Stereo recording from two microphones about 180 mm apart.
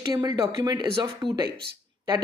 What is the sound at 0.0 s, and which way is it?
A woman's voice, 20° right (ahead or behind).